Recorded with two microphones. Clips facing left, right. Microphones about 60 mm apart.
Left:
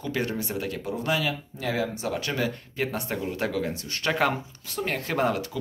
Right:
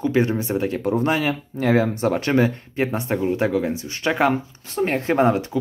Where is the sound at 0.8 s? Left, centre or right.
Right; by 4.3 s centre.